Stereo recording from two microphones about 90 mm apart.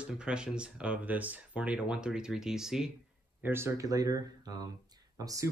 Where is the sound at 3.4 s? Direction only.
25° right (ahead or behind).